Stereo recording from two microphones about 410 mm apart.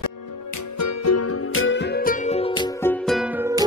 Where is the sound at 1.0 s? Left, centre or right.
Left.